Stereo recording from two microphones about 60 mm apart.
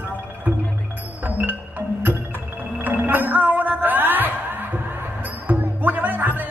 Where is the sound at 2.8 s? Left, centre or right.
Right.